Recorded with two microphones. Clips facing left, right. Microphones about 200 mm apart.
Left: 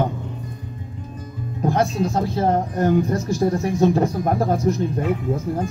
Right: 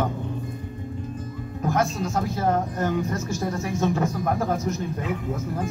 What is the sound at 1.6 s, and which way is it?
Speech, 35° left (ahead or behind).